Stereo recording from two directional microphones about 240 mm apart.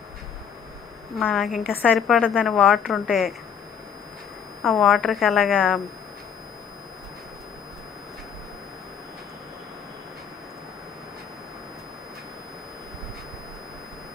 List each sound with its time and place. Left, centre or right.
1.1 s a woman's voice: centre
4.6 s a woman's voice: centre